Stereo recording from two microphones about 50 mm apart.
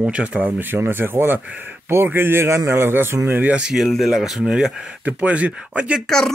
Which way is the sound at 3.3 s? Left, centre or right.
Right.